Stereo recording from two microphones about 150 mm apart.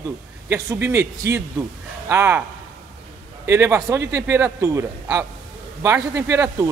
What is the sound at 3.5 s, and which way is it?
A man's voice, 20° right (ahead or behind).